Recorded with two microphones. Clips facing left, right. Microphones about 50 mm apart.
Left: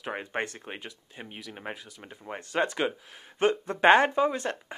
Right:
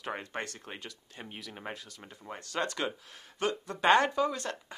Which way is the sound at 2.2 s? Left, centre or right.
Left.